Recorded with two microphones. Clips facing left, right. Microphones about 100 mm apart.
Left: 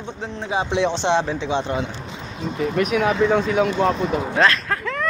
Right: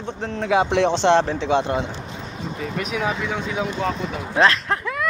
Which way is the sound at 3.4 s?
15° right (ahead or behind).